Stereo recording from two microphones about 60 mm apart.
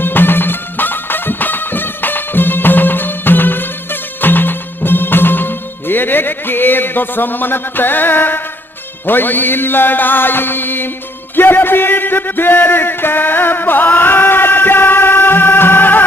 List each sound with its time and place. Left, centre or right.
0.0 s music: left
11.3 s speech: left